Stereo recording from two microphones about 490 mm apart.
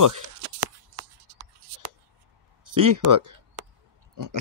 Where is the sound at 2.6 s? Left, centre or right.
Right.